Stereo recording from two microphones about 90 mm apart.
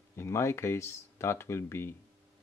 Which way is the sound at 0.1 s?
30° left (ahead or behind).